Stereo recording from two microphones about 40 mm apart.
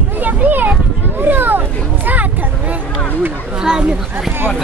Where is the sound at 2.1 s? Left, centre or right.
Right.